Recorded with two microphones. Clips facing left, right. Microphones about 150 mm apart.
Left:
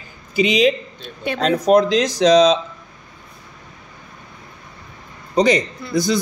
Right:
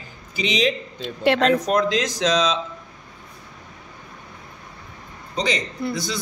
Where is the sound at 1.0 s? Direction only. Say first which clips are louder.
Right 6 dB; 90° right.